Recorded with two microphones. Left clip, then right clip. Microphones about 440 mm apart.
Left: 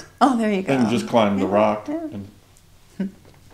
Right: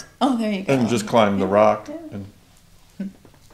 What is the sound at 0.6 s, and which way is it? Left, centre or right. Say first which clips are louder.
Speech: even; right.